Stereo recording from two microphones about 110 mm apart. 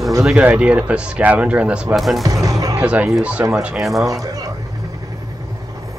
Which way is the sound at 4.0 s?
30° right (ahead or behind).